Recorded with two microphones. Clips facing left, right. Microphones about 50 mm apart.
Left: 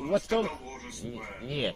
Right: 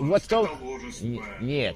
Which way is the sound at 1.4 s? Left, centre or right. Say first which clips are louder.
Right 6 dB; right.